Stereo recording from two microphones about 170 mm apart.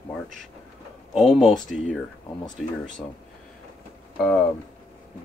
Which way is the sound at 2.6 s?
Centre (ahead or behind).